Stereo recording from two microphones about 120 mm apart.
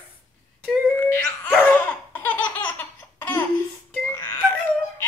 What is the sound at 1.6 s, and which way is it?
Laughter, 15° left (ahead or behind).